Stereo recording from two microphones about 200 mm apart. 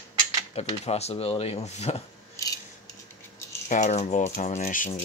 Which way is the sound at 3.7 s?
35° left (ahead or behind).